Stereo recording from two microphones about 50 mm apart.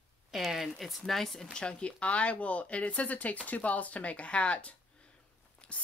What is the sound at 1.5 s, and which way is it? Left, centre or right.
Speech, left.